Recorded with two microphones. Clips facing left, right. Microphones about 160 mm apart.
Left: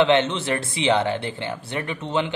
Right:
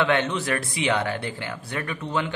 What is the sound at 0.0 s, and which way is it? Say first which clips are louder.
Speech: left 4 dB; 25° left (ahead or behind).